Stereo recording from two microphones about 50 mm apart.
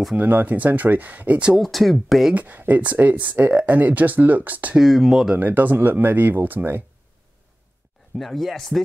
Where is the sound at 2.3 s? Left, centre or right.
Right.